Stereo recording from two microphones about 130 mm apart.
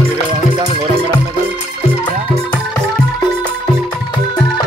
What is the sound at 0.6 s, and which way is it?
Music, 40° right (ahead or behind).